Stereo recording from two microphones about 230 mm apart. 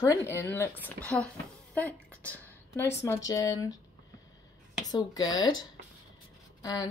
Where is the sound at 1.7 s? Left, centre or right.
Centre.